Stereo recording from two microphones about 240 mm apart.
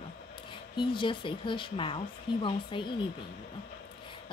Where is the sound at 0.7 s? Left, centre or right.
Left.